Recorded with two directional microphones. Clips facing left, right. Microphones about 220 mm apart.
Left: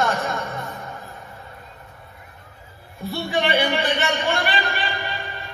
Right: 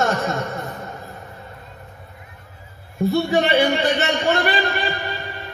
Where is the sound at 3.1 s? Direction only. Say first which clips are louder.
Right 4 dB; 45° right (ahead or behind).